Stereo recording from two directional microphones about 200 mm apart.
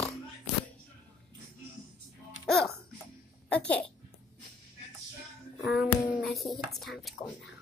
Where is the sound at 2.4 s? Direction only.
Centre (ahead or behind).